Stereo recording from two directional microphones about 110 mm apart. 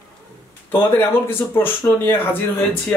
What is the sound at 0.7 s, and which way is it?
A man's voice, 20° left (ahead or behind).